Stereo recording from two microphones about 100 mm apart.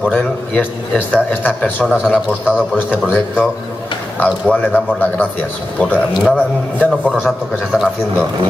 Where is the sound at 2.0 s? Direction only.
10° right (ahead or behind).